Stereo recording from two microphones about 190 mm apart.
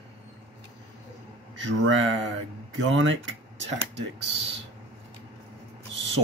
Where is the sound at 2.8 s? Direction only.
75° right (ahead or behind).